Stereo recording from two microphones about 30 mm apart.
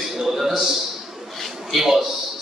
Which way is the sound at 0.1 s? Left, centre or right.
Centre.